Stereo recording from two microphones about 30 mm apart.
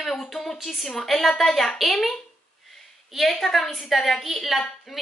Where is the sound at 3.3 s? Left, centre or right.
Centre.